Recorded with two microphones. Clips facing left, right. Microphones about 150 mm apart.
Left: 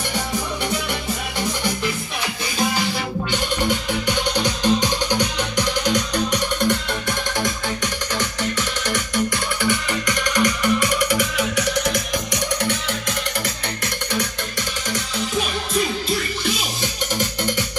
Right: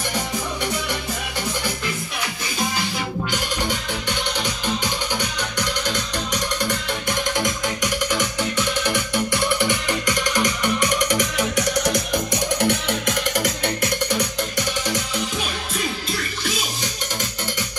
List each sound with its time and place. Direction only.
8.1 s music: 5° right (ahead or behind)
8.9 s music: 25° right (ahead or behind)